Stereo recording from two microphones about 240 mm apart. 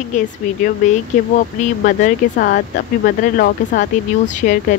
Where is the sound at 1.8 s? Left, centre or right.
Left.